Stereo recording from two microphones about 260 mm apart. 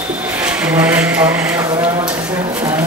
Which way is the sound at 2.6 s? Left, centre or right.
Centre.